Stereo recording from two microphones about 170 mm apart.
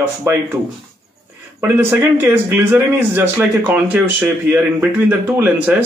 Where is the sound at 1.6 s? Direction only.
15° right (ahead or behind).